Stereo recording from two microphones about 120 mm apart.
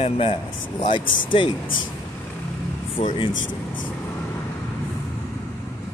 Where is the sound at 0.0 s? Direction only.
55° left (ahead or behind).